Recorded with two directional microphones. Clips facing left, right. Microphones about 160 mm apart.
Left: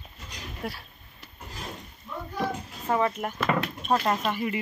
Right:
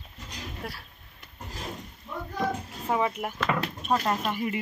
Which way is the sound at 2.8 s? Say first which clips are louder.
Left 1 dB; 10° right (ahead or behind).